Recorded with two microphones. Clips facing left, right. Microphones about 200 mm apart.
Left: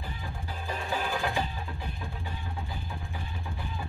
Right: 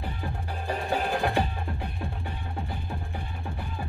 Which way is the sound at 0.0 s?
60° right (ahead or behind).